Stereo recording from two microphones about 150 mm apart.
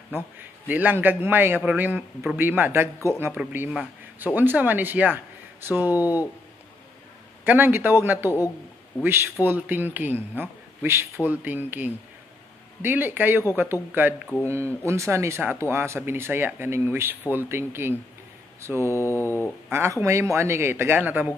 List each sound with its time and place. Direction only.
0.1 s a man's voice: 10° right (ahead or behind)
7.4 s a man's voice: 15° right (ahead or behind)
18.9 s mantra: 15° left (ahead or behind)
19.7 s a man's voice: 15° right (ahead or behind)